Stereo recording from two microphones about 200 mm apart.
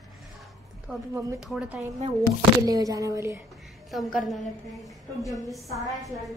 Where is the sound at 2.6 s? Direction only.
15° right (ahead or behind).